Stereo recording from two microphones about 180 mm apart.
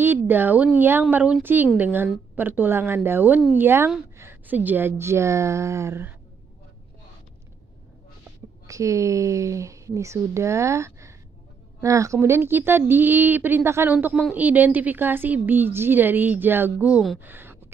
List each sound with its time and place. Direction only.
0.0 s a woman's voice: 10° right (ahead or behind)
8.6 s a woman's voice: 15° right (ahead or behind)
17.3 s a sound: 10° right (ahead or behind)